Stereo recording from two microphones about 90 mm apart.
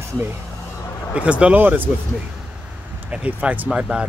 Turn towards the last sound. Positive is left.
turn(degrees=-10)  # may be behind; listen again after turning